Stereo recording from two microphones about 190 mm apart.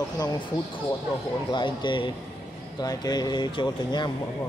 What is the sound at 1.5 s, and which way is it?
Speech, 25° left (ahead or behind).